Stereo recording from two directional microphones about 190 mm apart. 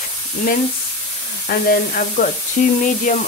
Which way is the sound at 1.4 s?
50° left (ahead or behind).